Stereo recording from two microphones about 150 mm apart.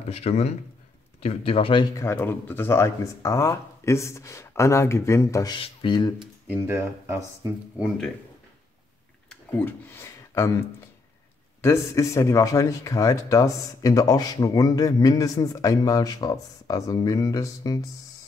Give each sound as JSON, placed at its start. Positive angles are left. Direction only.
{"t": 0.1, "sound": "speech", "side_deg": 45}
{"t": 2.0, "sound": "speech", "side_deg": 15}
{"t": 5.6, "sound": "speech", "side_deg": 35}
{"t": 6.4, "sound": "speech", "side_deg": -10}
{"t": 9.3, "sound": "speech", "side_deg": 15}
{"t": 11.6, "sound": "speech", "side_deg": 20}